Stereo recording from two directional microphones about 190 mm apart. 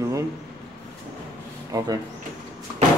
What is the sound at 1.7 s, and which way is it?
Speech, 15° right (ahead or behind).